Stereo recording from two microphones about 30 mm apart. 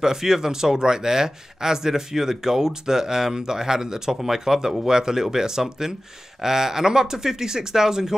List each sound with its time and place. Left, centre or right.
0.0 s speech: centre